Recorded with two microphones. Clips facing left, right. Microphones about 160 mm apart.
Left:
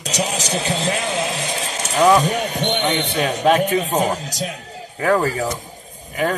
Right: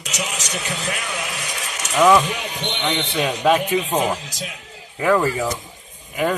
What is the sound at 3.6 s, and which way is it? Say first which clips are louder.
Speech: left 2 dB; 45° left (ahead or behind).